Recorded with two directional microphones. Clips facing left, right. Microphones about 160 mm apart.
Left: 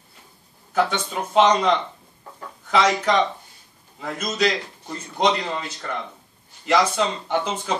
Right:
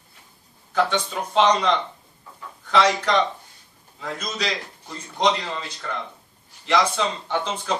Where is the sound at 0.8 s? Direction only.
5° left (ahead or behind).